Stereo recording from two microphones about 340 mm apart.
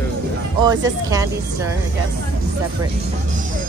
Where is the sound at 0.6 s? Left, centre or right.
Centre.